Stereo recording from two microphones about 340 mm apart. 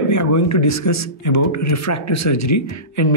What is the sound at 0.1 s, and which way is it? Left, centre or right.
Speech, left.